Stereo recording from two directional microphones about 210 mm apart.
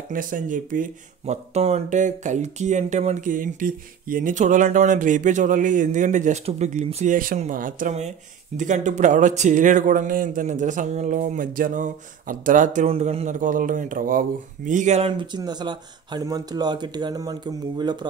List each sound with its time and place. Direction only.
0.1 s speech: 40° right (ahead or behind); by 18.0 s 20° right (ahead or behind)